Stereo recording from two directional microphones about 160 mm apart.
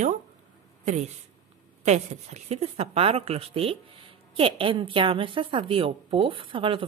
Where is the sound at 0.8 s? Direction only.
45° right (ahead or behind).